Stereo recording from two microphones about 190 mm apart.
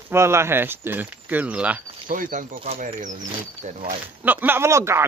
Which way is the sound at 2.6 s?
30° right (ahead or behind).